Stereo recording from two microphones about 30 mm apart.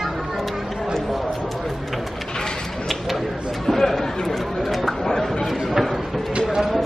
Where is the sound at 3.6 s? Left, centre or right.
Centre.